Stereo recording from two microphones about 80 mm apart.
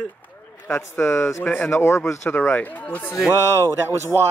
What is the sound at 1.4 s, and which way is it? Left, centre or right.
Speech, left.